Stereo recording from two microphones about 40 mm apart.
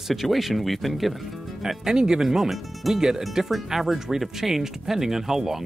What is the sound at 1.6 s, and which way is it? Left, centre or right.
Speech, centre.